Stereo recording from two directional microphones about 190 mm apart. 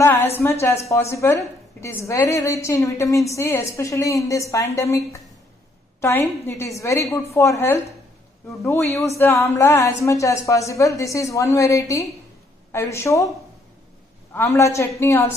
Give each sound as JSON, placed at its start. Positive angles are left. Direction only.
{"t": 0.0, "sound": "a woman's voice", "side_deg": 15}
{"t": 9.2, "sound": "a woman's voice", "side_deg": 15}
{"t": 14.3, "sound": "a woman's voice", "side_deg": 15}